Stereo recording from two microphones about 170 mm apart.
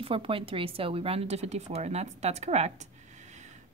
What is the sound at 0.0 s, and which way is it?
Speech, 35° right (ahead or behind).